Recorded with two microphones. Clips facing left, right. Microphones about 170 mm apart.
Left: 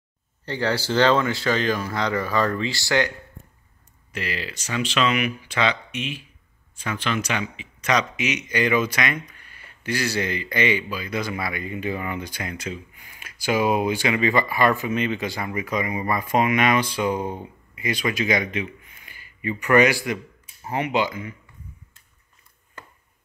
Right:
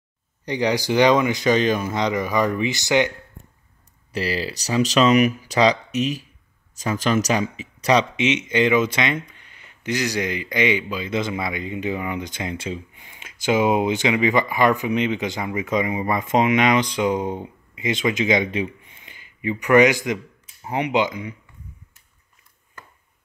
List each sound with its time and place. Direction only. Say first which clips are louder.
0.5 s speech: right 3 dB; 15° right (ahead or behind)
4.1 s speech: right 6 dB; 35° right (ahead or behind)
18.5 s a man's voice: right 4 dB; 30° right (ahead or behind)